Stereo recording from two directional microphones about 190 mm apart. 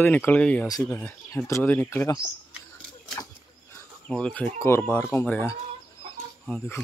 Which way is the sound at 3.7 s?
5° left (ahead or behind).